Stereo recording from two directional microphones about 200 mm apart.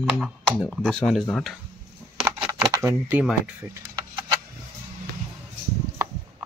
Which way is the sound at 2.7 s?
10° right (ahead or behind).